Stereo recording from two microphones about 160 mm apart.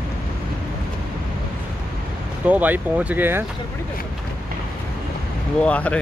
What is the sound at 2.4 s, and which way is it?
Speech, 10° right (ahead or behind).